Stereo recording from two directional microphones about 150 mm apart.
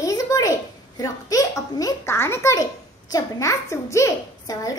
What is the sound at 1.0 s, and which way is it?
A child's voice, 25° left (ahead or behind).